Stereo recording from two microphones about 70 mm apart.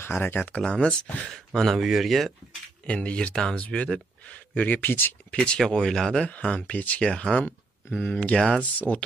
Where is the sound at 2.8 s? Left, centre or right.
Centre.